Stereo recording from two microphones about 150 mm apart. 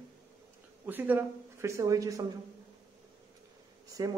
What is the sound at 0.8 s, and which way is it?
Speech, 10° right (ahead or behind).